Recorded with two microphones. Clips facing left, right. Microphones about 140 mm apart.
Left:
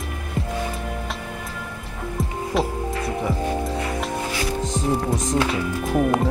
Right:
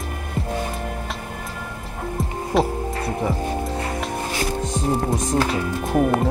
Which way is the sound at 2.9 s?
35° right (ahead or behind).